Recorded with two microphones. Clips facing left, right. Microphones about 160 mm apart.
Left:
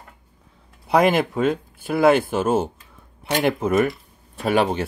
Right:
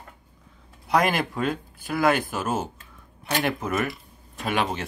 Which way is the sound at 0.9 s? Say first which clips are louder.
Left 5 dB; 25° left (ahead or behind).